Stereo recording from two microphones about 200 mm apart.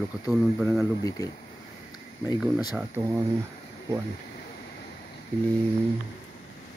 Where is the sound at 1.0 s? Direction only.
15° left (ahead or behind).